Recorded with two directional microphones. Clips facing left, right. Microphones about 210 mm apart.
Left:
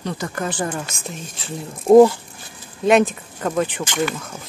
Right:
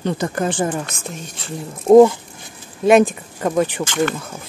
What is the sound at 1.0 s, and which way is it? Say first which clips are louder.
Speech: right 1 dB; centre (ahead or behind).